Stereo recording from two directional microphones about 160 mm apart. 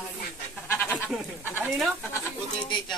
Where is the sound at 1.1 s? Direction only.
5° right (ahead or behind).